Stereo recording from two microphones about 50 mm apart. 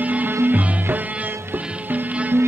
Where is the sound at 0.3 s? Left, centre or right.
Right.